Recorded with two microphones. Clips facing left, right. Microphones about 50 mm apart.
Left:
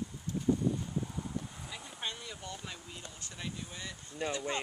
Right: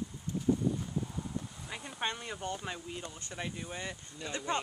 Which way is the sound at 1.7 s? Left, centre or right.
Right.